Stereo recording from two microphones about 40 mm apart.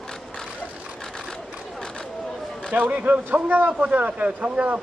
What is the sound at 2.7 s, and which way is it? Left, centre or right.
A man's voice, right.